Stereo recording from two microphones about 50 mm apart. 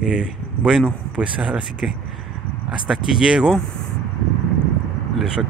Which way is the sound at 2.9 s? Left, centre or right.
Centre.